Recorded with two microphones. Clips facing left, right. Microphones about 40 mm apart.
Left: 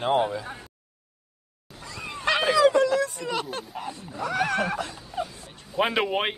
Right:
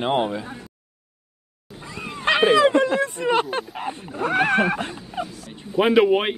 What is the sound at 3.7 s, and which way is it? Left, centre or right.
A man's voice, right.